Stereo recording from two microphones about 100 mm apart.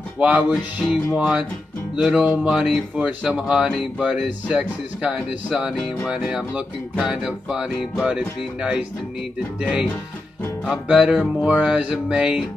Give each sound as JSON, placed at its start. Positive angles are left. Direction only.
{"t": 0.2, "sound": "speech", "side_deg": -15}
{"t": 0.8, "sound": "music", "side_deg": -5}
{"t": 2.0, "sound": "speech", "side_deg": -10}
{"t": 9.6, "sound": "speech", "side_deg": -10}